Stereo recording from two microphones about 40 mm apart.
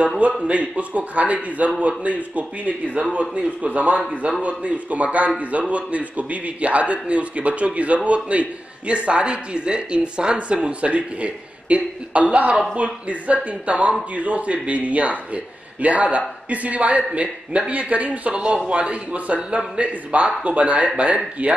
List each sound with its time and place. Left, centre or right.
0.4 s a man's voice: right